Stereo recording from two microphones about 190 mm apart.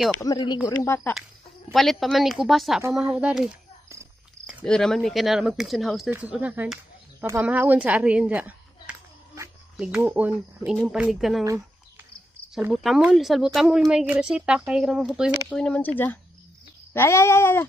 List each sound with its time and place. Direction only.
0.2 s speech: 20° left (ahead or behind)
0.7 s a sound: 10° left (ahead or behind)
1.7 s a woman's voice: centre (ahead or behind)
4.6 s a woman's voice: 5° left (ahead or behind)
12.5 s a woman's voice: centre (ahead or behind)
16.9 s a sound: 15° left (ahead or behind)